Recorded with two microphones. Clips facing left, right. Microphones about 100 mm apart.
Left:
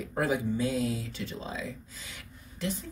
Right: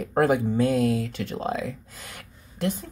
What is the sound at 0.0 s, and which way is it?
Speech, 60° right (ahead or behind).